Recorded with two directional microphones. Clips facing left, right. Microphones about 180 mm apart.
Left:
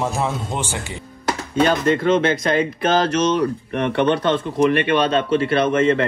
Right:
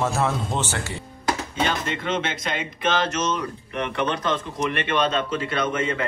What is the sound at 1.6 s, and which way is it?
Speech, 40° left (ahead or behind).